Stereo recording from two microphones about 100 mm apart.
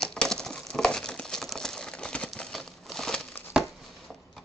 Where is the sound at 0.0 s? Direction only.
5° left (ahead or behind).